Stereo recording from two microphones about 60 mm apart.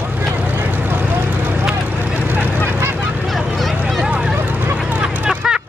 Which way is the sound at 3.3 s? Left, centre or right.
Centre.